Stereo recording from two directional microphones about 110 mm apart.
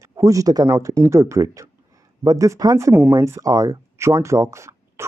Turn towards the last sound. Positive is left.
turn(degrees=-25)  # may be behind; listen again after turning